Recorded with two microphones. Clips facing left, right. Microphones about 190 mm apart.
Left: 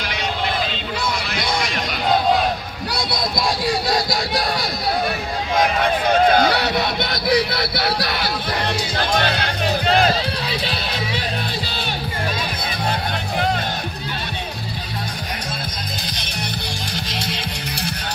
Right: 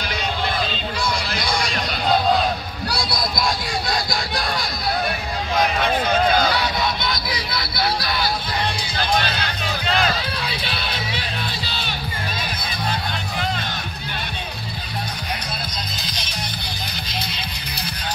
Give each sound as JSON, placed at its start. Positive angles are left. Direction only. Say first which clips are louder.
{"t": 3.0, "sound": "a sound", "louder": "left 2 dB", "side_deg": 25}
{"t": 6.3, "sound": "music", "louder": "left 3 dB", "side_deg": 65}
{"t": 8.9, "sound": "music", "louder": "left 1 dB", "side_deg": 45}
{"t": 17.1, "sound": "music", "louder": "left 3 dB", "side_deg": 80}